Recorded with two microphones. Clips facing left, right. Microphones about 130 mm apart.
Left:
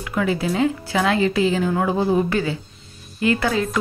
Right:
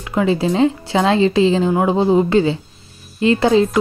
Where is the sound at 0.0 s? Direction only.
25° right (ahead or behind).